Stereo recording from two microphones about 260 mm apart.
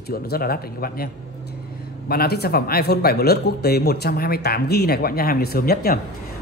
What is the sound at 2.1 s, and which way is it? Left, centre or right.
A man's voice, left.